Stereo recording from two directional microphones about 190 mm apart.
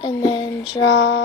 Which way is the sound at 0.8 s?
70° left (ahead or behind).